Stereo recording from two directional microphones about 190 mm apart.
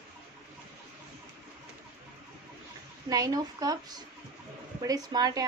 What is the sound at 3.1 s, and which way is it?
Speech, 20° right (ahead or behind).